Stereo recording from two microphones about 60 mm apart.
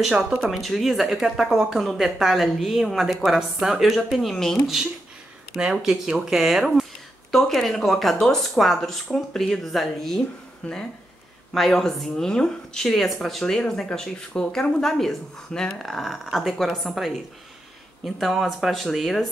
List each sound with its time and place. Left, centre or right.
0.5 s speech: centre
5.6 s speech: centre
10.6 s speech: centre
11.5 s speech: centre
16.0 s speech: centre